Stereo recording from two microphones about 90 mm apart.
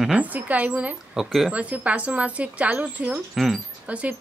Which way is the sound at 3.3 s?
Centre (ahead or behind).